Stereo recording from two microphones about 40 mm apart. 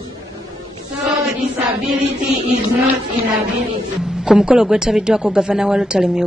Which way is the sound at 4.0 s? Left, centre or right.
Centre.